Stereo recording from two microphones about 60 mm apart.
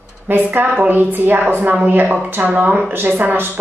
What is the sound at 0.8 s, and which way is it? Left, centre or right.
A woman's voice, right.